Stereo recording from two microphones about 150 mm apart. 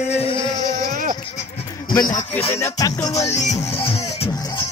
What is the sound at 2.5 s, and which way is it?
Speech, 20° left (ahead or behind).